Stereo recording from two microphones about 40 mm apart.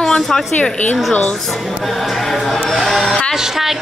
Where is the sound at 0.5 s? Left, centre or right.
Left.